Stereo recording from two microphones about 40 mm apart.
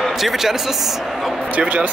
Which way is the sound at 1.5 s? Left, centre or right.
Right.